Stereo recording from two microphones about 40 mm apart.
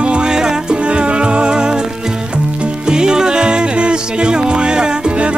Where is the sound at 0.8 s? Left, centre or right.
Right.